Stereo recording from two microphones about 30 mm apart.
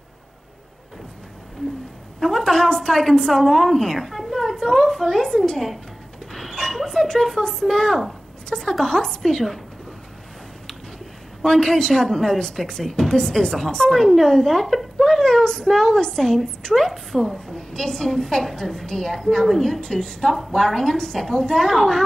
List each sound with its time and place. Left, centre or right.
2.1 s speech: centre
4.1 s a sound: centre
4.6 s a woman's voice: centre
6.5 s a sound: centre
7.3 s speech: centre
8.5 s a sound: centre
8.8 s speech: centre
11.4 s speech: centre
15.0 s speech: centre
16.7 s a woman's voice: centre
17.5 s speech: centre
19.4 s a woman's voice: centre
19.7 s speech: centre